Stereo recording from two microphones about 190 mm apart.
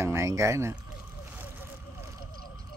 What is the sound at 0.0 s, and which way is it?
Speech, 15° right (ahead or behind).